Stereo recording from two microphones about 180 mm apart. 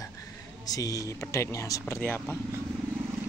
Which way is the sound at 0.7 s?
20° left (ahead or behind).